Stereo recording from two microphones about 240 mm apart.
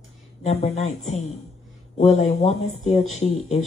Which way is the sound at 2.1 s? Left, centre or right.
Left.